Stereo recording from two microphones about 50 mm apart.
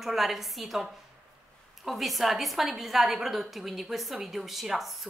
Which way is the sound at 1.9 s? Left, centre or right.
Centre.